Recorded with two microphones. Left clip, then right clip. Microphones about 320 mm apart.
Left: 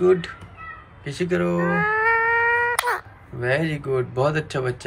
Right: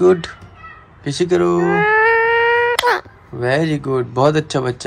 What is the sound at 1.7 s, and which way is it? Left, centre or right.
Cat, right.